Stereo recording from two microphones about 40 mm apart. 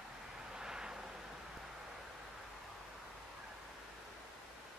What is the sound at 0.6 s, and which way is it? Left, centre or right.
Vehicle, centre.